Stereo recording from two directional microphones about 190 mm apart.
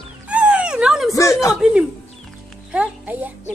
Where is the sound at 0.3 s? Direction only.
5° right (ahead or behind).